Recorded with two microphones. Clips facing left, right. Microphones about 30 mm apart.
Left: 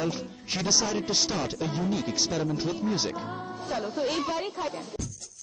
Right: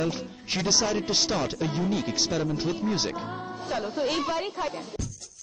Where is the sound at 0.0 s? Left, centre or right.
Centre.